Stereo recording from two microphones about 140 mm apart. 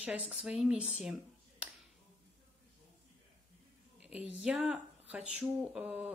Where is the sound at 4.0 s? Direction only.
10° right (ahead or behind).